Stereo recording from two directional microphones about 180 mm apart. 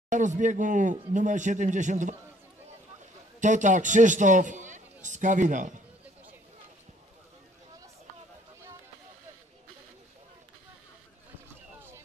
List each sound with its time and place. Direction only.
0.1 s speech: 45° right (ahead or behind)
3.3 s a man's voice: 45° right (ahead or behind)